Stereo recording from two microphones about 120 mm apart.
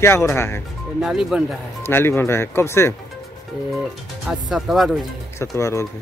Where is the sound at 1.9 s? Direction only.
20° left (ahead or behind).